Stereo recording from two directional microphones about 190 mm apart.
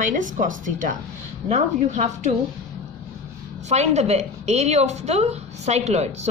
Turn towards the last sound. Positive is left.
turn(degrees=-35)  # may be behind; listen again after turning